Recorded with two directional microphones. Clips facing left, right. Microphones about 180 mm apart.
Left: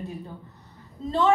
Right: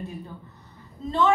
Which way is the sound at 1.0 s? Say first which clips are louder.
Even; 35° left (ahead or behind).